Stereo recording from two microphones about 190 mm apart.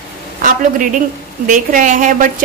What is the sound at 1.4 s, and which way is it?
Speech, 45° right (ahead or behind).